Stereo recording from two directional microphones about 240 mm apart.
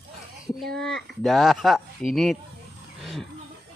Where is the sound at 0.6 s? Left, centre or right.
Centre.